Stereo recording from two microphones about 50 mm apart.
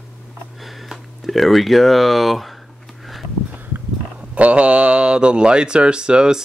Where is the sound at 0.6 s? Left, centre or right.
Centre.